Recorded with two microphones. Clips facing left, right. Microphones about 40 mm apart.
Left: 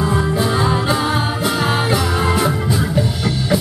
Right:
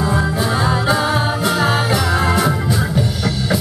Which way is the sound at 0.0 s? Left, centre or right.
Centre.